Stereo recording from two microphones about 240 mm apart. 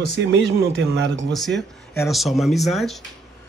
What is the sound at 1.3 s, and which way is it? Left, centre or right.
Speech, centre.